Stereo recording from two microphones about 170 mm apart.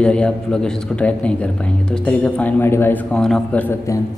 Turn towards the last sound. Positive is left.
turn(degrees=5)  # may be behind; listen again after turning